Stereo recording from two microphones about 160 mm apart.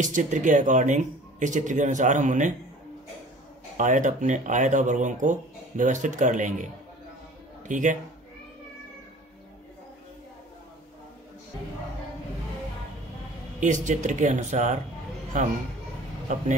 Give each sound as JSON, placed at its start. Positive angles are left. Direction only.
{"t": 0.0, "sound": "speech", "side_deg": -50}
{"t": 3.7, "sound": "speech", "side_deg": -50}
{"t": 13.6, "sound": "speech", "side_deg": -50}